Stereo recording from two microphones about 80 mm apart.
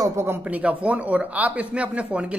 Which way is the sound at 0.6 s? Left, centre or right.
Centre.